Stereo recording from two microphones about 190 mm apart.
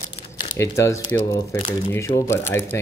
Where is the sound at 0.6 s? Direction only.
15° left (ahead or behind).